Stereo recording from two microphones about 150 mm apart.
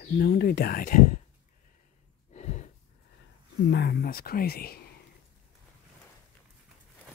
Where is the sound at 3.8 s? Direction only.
80° left.